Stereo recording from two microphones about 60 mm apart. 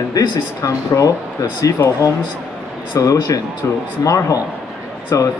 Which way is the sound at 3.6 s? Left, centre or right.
Left.